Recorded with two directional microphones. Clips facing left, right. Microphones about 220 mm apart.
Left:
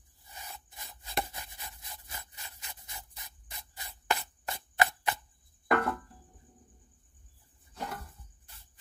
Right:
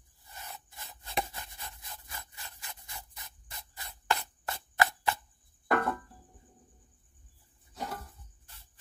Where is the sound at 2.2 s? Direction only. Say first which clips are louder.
Right 1 dB; 20° left (ahead or behind).